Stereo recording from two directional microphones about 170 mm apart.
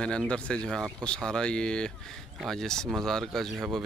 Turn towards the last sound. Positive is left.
turn(degrees=0)  # may be behind; listen again after turning